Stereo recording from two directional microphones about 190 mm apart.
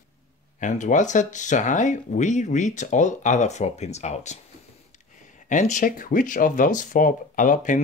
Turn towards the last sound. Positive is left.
turn(degrees=45)  # may be behind; listen again after turning